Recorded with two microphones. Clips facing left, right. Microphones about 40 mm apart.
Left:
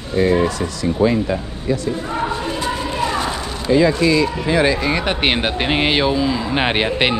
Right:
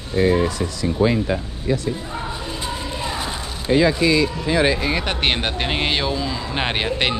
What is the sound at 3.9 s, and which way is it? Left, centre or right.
Speech, left.